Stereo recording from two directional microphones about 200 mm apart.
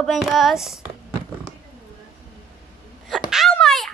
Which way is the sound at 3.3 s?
Centre (ahead or behind).